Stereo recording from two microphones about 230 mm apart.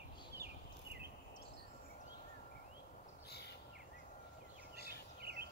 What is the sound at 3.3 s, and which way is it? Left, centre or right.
Bird, left.